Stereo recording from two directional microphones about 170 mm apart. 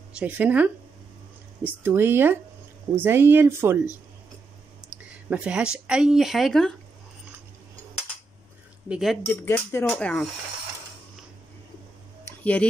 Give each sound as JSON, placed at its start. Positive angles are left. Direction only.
{"t": 0.2, "sound": "speech", "side_deg": -10}
{"t": 5.3, "sound": "speech", "side_deg": -5}
{"t": 8.8, "sound": "speech", "side_deg": -5}
{"t": 9.4, "sound": "speech", "side_deg": 15}
{"t": 12.3, "sound": "a sound", "side_deg": 10}